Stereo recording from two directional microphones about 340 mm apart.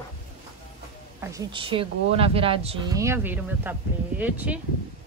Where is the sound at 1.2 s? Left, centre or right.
Centre.